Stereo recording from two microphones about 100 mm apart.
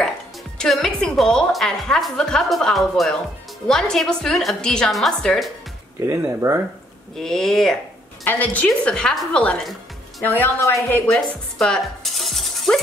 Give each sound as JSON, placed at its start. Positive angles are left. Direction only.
{"t": 0.6, "sound": "a woman's voice", "side_deg": 5}
{"t": 5.9, "sound": "speech", "side_deg": -30}
{"t": 7.2, "sound": "a woman's voice", "side_deg": 5}
{"t": 8.3, "sound": "a woman's voice", "side_deg": 15}
{"t": 10.2, "sound": "a woman's voice", "side_deg": 20}
{"t": 10.6, "sound": "speech", "side_deg": 30}
{"t": 11.1, "sound": "speech", "side_deg": 5}